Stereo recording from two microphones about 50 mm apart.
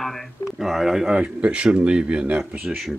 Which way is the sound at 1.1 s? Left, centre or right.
Right.